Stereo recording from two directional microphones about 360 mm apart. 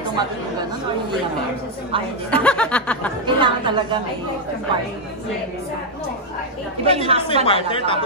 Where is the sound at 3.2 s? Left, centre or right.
Centre.